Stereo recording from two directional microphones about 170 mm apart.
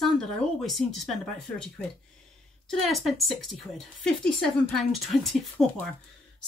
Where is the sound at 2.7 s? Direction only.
Centre (ahead or behind).